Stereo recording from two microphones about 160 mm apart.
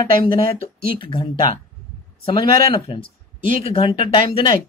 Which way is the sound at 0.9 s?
30° left (ahead or behind).